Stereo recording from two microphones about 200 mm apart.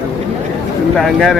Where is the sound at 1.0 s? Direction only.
Centre (ahead or behind).